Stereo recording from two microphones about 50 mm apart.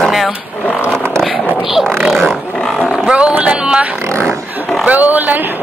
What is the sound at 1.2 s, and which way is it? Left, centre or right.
Speech, centre.